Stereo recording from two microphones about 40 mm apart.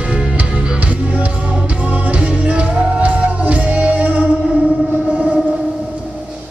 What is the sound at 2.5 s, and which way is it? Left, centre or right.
Music, right.